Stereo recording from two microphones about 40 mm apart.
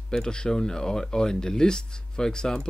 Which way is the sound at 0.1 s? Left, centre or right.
Centre.